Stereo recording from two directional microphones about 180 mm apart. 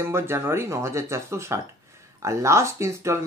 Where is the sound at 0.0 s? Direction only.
15° right (ahead or behind).